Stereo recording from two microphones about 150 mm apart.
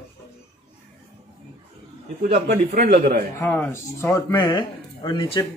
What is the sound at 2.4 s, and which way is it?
Speech, 90° right.